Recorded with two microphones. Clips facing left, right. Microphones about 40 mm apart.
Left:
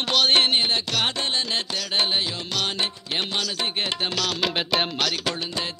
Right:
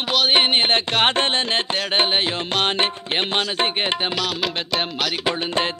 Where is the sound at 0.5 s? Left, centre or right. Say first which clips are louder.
Right 5 dB; right.